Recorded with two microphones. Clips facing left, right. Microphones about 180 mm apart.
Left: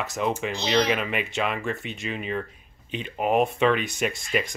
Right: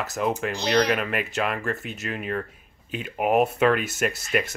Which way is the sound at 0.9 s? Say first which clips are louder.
Right 1 dB; centre (ahead or behind).